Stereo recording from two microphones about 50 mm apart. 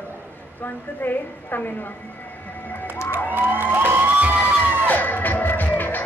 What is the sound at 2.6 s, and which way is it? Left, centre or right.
Music, left.